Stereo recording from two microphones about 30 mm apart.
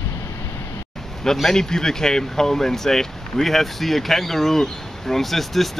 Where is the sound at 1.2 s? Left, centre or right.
Centre.